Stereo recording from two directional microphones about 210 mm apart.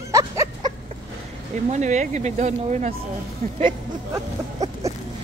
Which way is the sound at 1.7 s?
35° right (ahead or behind).